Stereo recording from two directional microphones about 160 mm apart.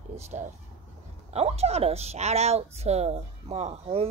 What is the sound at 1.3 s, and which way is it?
A woman's voice, 40° right (ahead or behind).